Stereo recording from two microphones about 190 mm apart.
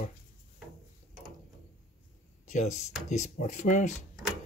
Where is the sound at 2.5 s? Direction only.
40° left (ahead or behind).